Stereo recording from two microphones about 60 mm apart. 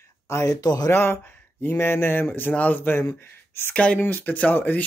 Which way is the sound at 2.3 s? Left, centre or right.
Left.